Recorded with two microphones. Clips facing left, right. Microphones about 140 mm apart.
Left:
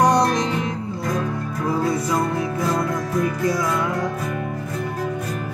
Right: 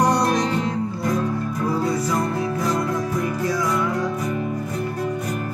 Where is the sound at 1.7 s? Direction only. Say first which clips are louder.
Left 2 dB; 20° left (ahead or behind).